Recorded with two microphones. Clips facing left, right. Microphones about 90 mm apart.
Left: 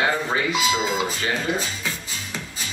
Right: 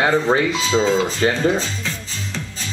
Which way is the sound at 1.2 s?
45° right (ahead or behind).